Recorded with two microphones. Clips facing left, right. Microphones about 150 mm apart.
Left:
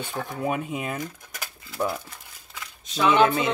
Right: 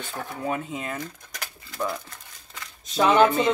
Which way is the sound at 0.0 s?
15° left (ahead or behind).